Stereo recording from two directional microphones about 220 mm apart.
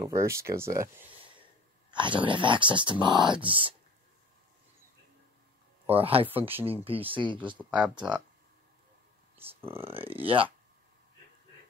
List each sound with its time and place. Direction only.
0.0 s speech: 10° right (ahead or behind)
5.9 s speech: 25° right (ahead or behind)
9.7 s speech: 25° right (ahead or behind)